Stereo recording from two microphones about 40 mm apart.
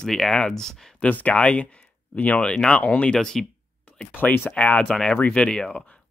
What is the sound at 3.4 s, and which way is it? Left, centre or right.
Speech, centre.